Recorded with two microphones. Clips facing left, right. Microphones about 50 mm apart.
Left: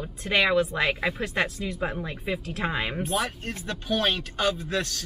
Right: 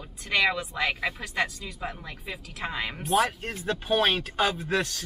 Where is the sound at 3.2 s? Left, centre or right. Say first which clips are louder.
Right 3 dB; centre.